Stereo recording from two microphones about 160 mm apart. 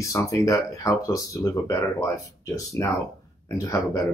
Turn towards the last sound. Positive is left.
turn(degrees=20)  # may be behind; listen again after turning